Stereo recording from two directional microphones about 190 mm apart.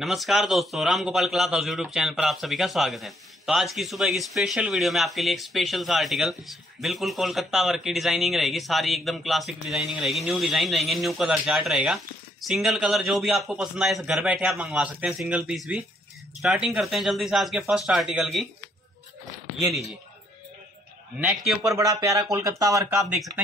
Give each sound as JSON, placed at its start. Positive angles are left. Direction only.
{"t": 0.0, "sound": "a man's voice", "side_deg": 0}
{"t": 19.7, "sound": "a man's voice", "side_deg": 0}
{"t": 21.2, "sound": "a man's voice", "side_deg": 0}
{"t": 21.6, "sound": "speech", "side_deg": -15}